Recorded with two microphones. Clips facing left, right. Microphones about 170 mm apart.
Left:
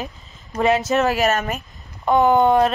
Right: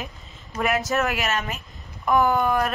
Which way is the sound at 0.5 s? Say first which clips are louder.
Left 6 dB; 25° left (ahead or behind).